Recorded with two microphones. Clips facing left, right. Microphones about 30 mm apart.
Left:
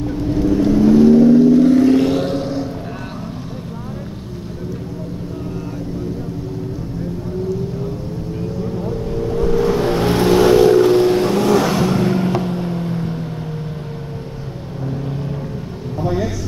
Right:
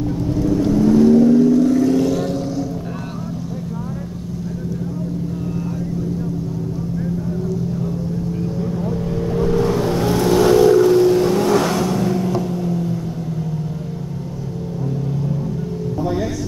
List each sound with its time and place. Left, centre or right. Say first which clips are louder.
0.7 s vehicle: left 2 dB; left
9.6 s vehicle: left 2 dB; left